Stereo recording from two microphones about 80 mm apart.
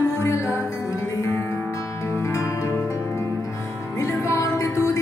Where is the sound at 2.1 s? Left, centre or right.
Left.